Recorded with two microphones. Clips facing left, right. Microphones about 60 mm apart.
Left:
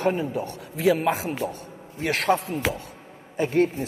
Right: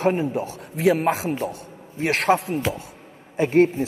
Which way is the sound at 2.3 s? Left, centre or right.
Centre.